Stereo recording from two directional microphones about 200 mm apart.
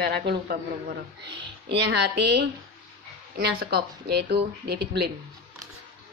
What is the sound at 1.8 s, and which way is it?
A woman's voice, 55° right (ahead or behind).